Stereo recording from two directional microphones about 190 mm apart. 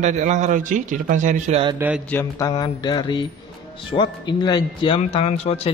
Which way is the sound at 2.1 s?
20° left (ahead or behind).